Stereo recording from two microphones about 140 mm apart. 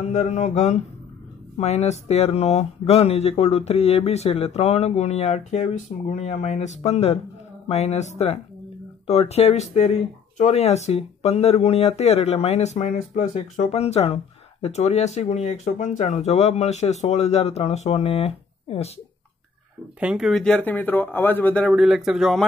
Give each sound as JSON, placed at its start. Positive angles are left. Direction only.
{"t": 0.1, "sound": "speech", "side_deg": 55}
{"t": 20.0, "sound": "speech", "side_deg": -5}
{"t": 21.6, "sound": "speech", "side_deg": 0}